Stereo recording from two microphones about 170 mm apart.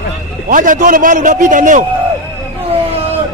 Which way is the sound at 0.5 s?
50° right (ahead or behind).